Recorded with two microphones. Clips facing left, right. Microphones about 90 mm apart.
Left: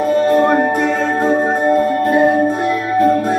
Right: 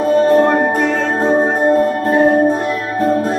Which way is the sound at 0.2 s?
25° right (ahead or behind).